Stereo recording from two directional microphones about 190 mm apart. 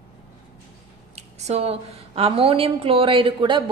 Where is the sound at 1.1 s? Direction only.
35° right (ahead or behind).